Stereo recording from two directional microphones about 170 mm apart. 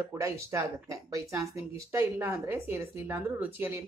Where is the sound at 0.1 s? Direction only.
15° right (ahead or behind).